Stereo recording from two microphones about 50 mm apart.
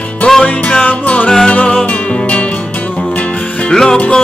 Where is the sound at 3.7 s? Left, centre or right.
Centre.